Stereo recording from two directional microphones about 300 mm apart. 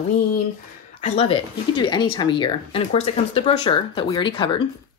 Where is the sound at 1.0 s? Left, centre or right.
Left.